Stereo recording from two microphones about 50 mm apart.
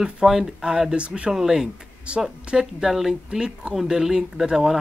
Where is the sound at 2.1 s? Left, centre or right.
Right.